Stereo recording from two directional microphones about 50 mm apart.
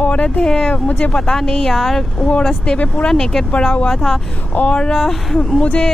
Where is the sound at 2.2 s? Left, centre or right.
Left.